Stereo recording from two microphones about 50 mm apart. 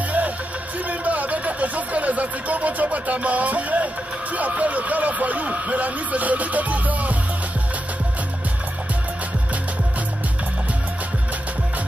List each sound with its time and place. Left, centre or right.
0.8 s speech: right